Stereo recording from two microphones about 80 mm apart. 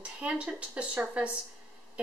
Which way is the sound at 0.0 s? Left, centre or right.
Centre.